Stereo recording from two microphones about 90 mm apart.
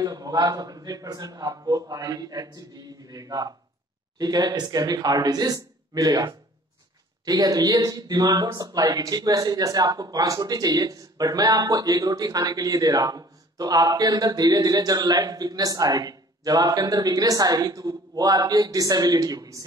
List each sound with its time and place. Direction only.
0.0 s speech: 45° right (ahead or behind)